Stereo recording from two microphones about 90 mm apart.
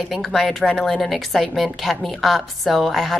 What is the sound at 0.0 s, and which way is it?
A woman's voice, centre (ahead or behind).